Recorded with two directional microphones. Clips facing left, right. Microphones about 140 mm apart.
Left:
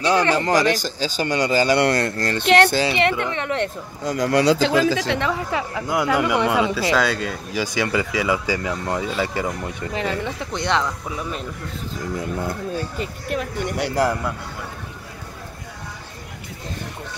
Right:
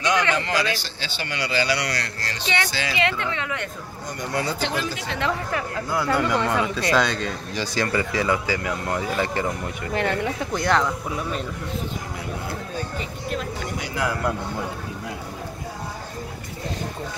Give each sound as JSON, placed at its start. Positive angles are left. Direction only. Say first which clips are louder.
{"t": 0.0, "sound": "speech", "louder": "left 4 dB", "side_deg": 35}
{"t": 4.0, "sound": "speech", "louder": "left 9 dB", "side_deg": 90}
{"t": 5.5, "sound": "speech", "louder": "left 2 dB", "side_deg": 15}
{"t": 8.5, "sound": "speech", "louder": "left 2 dB", "side_deg": 20}
{"t": 8.9, "sound": "speech", "louder": "even", "side_deg": 0}
{"t": 13.0, "sound": "a sound", "louder": "left 3 dB", "side_deg": 55}